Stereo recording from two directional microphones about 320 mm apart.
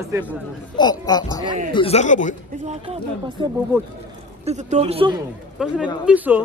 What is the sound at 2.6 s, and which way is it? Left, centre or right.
Speech, centre.